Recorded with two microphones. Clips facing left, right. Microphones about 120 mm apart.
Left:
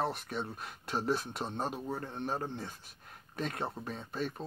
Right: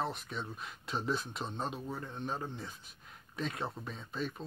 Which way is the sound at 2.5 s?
60° left (ahead or behind).